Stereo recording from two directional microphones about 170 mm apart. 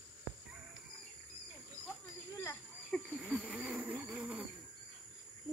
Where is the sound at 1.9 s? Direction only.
15° left (ahead or behind).